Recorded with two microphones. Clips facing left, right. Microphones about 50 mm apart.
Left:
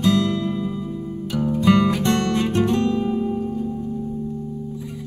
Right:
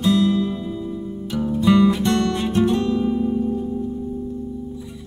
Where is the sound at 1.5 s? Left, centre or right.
Left.